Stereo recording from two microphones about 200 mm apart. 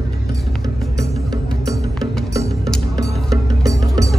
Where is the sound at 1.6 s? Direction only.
15° right (ahead or behind).